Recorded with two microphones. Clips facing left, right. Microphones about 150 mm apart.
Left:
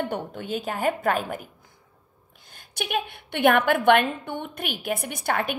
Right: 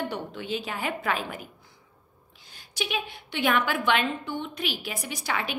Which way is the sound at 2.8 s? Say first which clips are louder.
Left 3 dB; 55° left (ahead or behind).